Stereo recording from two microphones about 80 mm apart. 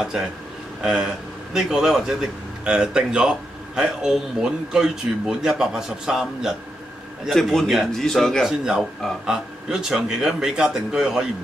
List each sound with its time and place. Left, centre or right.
0.8 s a man's voice: centre
8.5 s speech: centre